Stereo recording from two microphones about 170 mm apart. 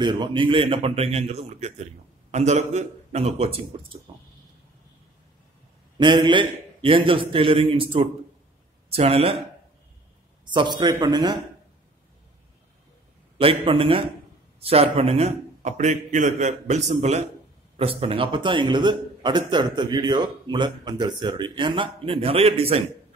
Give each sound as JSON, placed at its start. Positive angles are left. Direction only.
{"t": 0.0, "sound": "a man's voice", "side_deg": -30}
{"t": 4.1, "sound": "a sound", "side_deg": -30}
{"t": 5.9, "sound": "a man's voice", "side_deg": -25}
{"t": 10.4, "sound": "a man's voice", "side_deg": -25}
{"t": 13.4, "sound": "a man's voice", "side_deg": -35}